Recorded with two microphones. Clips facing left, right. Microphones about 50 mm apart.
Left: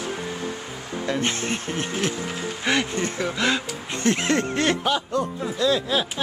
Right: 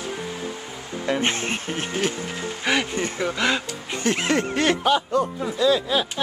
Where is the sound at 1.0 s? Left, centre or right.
Right.